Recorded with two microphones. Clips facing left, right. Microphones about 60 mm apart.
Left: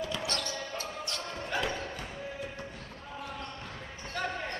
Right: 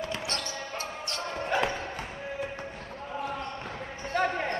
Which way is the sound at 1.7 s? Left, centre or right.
Right.